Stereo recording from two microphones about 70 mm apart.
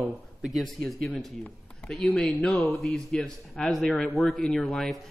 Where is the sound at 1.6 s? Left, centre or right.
Centre.